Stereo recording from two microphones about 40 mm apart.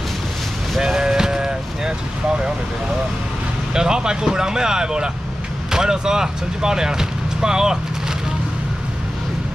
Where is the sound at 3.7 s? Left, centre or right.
Centre.